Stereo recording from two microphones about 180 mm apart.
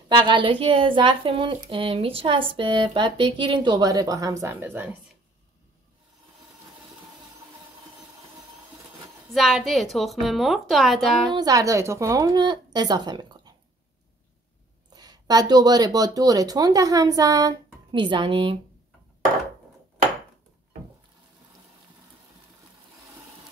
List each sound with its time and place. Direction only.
0.1 s a woman's voice: 25° right (ahead or behind)
9.3 s a woman's voice: centre (ahead or behind)
11.3 s a woman's voice: 20° right (ahead or behind)
15.0 s a woman's voice: 20° right (ahead or behind)